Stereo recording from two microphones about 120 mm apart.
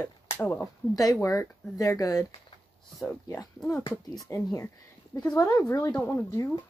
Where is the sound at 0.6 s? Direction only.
30° left (ahead or behind).